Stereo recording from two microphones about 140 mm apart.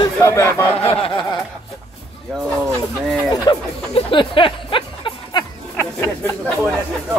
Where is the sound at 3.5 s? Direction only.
35° left (ahead or behind).